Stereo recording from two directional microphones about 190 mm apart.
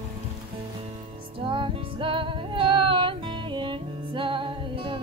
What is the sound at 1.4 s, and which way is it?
Music, 25° right (ahead or behind).